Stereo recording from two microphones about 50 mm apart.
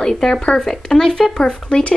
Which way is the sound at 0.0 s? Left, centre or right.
Centre.